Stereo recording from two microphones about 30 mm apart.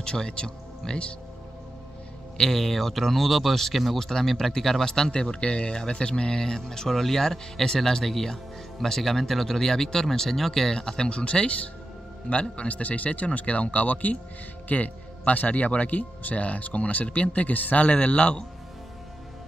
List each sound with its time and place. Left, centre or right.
0.0 s speech: left
2.3 s speech: centre
4.0 s speech: centre
10.7 s speech: left